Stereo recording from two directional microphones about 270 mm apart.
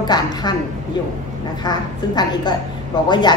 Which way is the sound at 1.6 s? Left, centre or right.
Centre.